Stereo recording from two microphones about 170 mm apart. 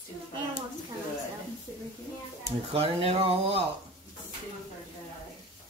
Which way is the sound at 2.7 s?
35° right (ahead or behind).